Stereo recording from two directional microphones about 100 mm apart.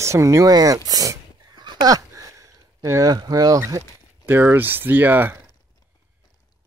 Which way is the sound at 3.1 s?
40° right (ahead or behind).